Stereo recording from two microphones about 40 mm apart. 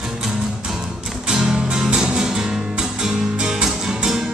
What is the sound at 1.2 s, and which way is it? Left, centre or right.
Music, centre.